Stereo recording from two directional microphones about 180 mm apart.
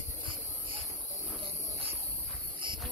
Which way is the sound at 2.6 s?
25° right (ahead or behind).